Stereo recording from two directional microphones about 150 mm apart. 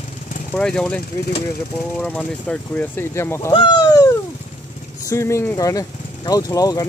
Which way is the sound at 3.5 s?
30° left (ahead or behind).